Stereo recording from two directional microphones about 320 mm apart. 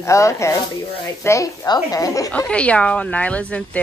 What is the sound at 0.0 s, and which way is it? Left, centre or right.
Speech, centre.